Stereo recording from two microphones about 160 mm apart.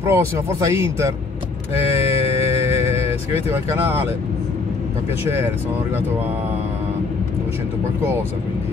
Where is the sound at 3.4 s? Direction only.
15° right (ahead or behind).